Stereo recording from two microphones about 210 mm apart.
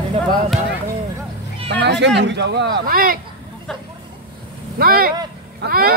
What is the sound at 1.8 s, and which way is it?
Speech, 55° right (ahead or behind).